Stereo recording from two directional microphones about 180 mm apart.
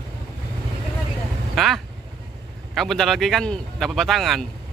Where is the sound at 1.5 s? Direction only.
Centre (ahead or behind).